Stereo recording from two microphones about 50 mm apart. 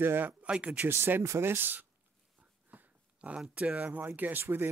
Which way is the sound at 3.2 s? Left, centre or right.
Right.